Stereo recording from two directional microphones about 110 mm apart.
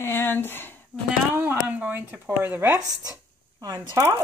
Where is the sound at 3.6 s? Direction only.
35° right (ahead or behind).